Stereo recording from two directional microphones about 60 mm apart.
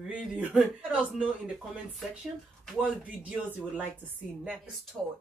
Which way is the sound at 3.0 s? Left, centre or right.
Right.